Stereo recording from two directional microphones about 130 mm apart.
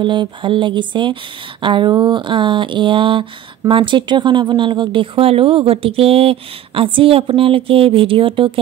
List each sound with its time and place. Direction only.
0.0 s speech: 35° right (ahead or behind)